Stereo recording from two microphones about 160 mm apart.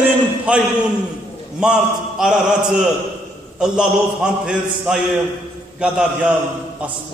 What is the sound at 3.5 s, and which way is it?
A man's voice, 5° right (ahead or behind).